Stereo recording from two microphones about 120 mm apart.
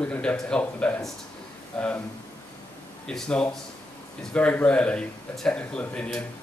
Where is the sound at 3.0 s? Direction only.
5° left (ahead or behind).